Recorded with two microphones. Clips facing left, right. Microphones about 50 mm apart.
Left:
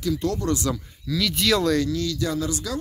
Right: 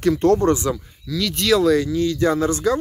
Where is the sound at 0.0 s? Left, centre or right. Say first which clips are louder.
Right 9 dB; right.